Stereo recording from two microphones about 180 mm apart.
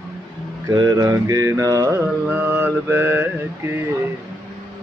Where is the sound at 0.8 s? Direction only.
20° right (ahead or behind).